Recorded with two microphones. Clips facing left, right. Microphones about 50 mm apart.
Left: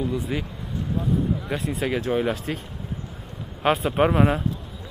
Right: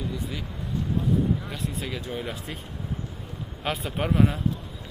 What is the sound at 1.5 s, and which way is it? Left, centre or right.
Speech, left.